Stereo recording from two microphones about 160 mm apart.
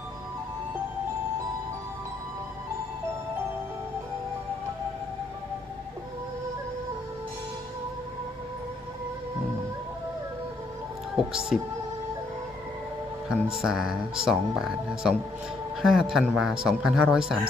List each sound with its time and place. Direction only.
11.1 s speech: 5° right (ahead or behind)
13.3 s speech: 5° right (ahead or behind)